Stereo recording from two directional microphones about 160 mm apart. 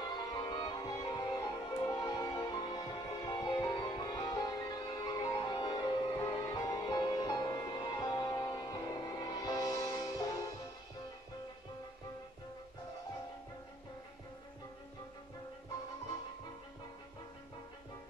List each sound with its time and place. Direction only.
0.4 s music: 25° left (ahead or behind)